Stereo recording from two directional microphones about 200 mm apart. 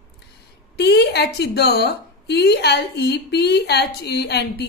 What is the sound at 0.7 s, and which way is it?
A woman's voice, 55° left (ahead or behind).